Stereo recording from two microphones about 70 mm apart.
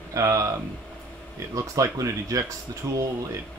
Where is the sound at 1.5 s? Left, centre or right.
Right.